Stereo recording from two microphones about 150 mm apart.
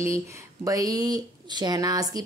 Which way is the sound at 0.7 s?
25° right (ahead or behind).